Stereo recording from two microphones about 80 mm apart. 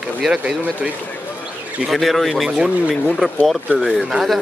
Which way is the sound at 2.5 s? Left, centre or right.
Centre.